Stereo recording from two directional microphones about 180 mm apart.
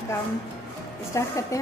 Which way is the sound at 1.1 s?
15° left (ahead or behind).